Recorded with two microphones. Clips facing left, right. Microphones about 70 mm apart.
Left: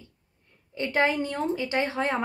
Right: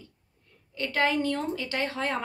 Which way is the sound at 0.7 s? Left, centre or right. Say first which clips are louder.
Left 2 dB; left.